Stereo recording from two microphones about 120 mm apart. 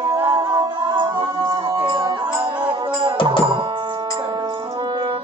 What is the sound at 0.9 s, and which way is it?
Music, 40° right (ahead or behind).